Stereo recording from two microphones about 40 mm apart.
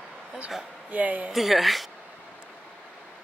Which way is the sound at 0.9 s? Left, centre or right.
Right.